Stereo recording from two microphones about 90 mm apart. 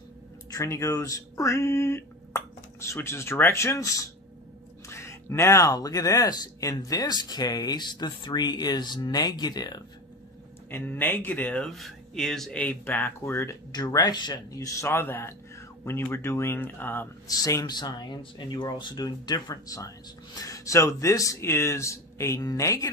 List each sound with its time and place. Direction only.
0.5 s speech: 35° left (ahead or behind); by 9.8 s 50° left (ahead or behind)
10.7 s speech: 20° left (ahead or behind)
11.6 s speech: 5° left (ahead or behind)
12.5 s speech: 15° left (ahead or behind)
13.7 s speech: 50° left (ahead or behind)
14.5 s speech: 35° left (ahead or behind)
17.3 s speech: 45° left (ahead or behind)